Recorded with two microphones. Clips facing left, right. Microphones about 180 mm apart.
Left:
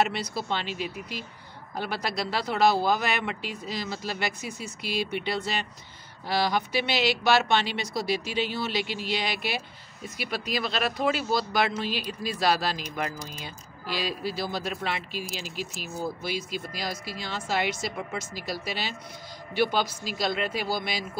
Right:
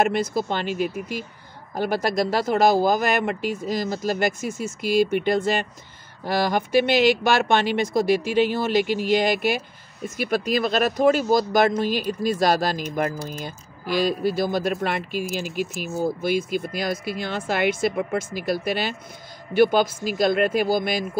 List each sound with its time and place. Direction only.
0.0 s speech: 50° right (ahead or behind)